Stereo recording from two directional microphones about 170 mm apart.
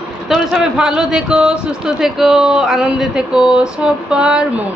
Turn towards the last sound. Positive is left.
turn(degrees=-5)  # may be behind; listen again after turning